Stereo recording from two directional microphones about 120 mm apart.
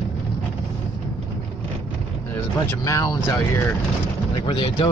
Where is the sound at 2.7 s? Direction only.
25° left (ahead or behind).